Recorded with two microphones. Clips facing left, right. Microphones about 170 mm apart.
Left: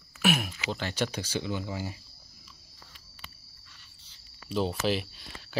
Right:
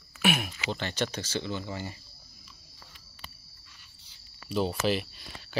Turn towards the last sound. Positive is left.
turn(degrees=0)  # may be behind; listen again after turning